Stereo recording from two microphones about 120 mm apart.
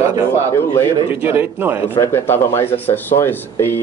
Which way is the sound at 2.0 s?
20° left (ahead or behind).